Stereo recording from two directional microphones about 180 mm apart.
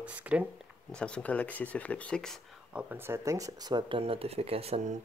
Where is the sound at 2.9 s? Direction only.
15° right (ahead or behind); by 4.9 s 35° right (ahead or behind).